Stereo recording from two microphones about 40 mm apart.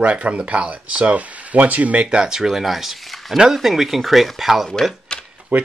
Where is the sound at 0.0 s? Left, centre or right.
Right.